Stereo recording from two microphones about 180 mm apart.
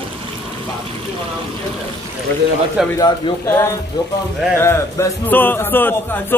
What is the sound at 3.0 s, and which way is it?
Speech, 20° left (ahead or behind).